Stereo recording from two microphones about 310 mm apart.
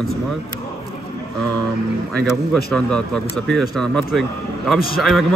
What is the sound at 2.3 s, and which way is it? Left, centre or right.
Speech, centre.